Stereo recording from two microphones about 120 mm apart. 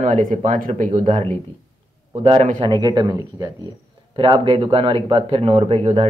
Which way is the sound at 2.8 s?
35° right (ahead or behind).